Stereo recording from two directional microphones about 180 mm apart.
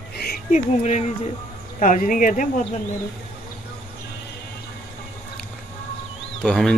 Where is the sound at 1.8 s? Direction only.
45° left (ahead or behind).